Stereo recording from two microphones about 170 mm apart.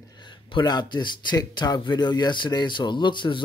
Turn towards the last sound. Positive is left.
turn(degrees=30)  # may be behind; listen again after turning